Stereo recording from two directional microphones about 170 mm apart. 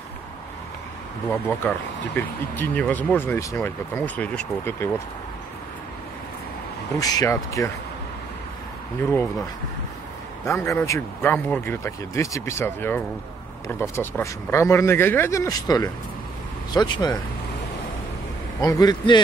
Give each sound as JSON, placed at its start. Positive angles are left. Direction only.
{"t": 1.3, "sound": "speech", "side_deg": 10}
{"t": 7.0, "sound": "speech", "side_deg": 20}
{"t": 10.4, "sound": "speech", "side_deg": 15}
{"t": 18.6, "sound": "speech", "side_deg": 20}